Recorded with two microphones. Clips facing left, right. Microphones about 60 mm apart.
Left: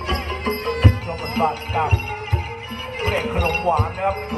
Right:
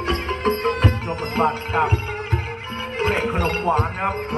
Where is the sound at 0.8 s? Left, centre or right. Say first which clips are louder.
Even; left.